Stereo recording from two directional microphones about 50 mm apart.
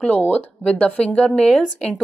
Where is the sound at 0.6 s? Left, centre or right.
Left; by 1.9 s centre.